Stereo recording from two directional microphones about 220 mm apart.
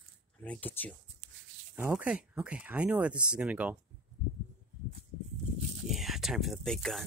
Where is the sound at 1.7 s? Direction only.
5° right (ahead or behind).